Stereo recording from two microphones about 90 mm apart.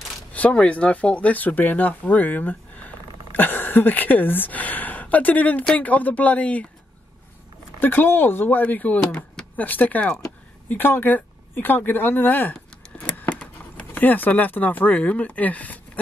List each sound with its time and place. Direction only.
0.3 s speech: 15° left (ahead or behind)
5.6 s speech: 5° left (ahead or behind)
5.9 s speech: 15° left (ahead or behind)
7.8 s speech: 20° left (ahead or behind)